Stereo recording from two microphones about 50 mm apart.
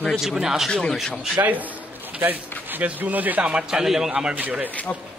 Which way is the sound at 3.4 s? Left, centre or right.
Centre.